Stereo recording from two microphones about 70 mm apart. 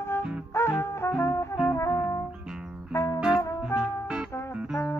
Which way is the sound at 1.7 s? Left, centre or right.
Left.